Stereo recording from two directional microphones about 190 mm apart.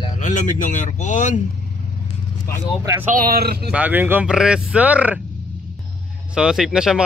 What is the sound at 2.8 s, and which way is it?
Speech, 15° right (ahead or behind).